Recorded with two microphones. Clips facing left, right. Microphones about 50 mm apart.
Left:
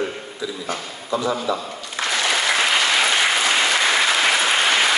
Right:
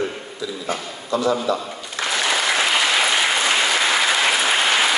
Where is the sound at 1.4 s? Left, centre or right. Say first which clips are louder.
Right 1 dB; centre.